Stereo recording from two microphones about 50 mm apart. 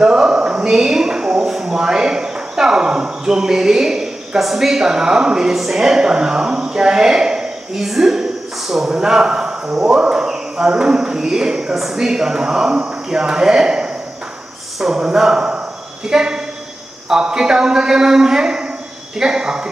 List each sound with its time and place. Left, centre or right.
0.0 s a woman's voice: centre